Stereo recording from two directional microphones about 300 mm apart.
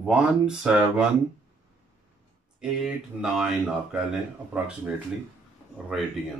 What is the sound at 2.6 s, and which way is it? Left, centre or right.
Speech, centre.